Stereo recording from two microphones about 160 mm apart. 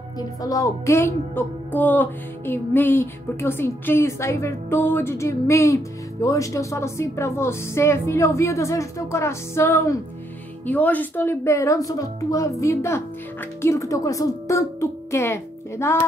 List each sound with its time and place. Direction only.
0.4 s a woman's voice: 20° left (ahead or behind)